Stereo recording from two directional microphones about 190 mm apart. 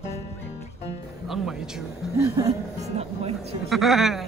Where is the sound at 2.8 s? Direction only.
35° right (ahead or behind).